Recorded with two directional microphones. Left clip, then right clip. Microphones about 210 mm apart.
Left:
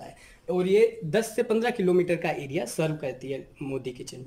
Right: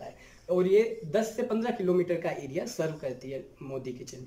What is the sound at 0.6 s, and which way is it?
Speech, 50° left (ahead or behind).